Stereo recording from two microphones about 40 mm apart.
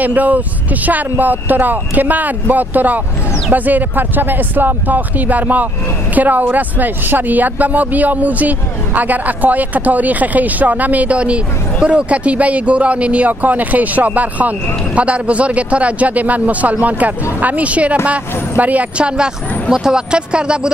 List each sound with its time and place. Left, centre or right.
0.0 s a man's voice: right
19.0 s speech: right